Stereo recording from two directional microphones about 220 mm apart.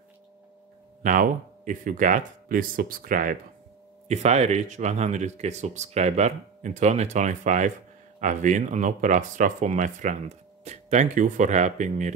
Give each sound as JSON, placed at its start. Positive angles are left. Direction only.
{"t": 1.0, "sound": "speech", "side_deg": -35}